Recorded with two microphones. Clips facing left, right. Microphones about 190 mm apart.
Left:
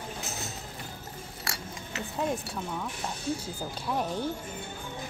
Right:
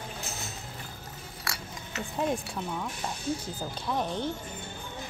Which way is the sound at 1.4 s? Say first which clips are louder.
Even; 25° left (ahead or behind).